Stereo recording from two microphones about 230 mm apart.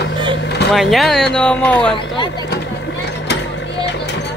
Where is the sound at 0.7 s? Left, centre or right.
Centre.